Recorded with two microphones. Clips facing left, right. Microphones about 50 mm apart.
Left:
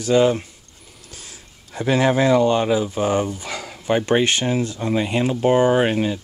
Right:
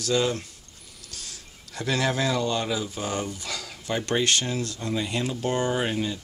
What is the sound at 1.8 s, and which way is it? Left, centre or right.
Speech, left.